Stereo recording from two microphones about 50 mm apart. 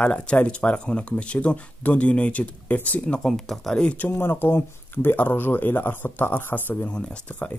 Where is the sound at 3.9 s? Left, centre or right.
Left.